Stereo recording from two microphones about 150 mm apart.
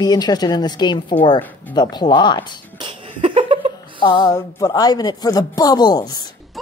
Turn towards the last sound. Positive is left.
turn(degrees=25)  # may be behind; listen again after turning